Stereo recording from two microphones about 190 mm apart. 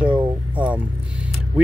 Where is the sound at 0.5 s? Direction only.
5° right (ahead or behind).